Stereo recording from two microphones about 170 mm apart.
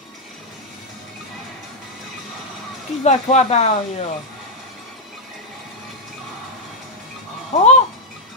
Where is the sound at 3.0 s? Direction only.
40° left (ahead or behind).